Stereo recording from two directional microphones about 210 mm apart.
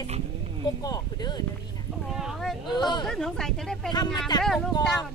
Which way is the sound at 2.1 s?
Centre (ahead or behind).